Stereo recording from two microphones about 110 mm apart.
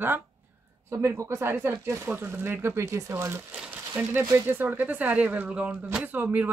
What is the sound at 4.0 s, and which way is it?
Speech, 20° right (ahead or behind).